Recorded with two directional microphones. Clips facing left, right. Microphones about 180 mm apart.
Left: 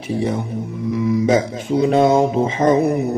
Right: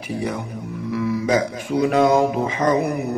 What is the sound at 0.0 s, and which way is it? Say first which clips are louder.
Speech: left 5 dB; 25° left (ahead or behind).